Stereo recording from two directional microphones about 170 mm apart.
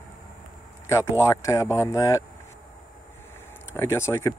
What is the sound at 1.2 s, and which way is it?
A man's voice, 20° left (ahead or behind).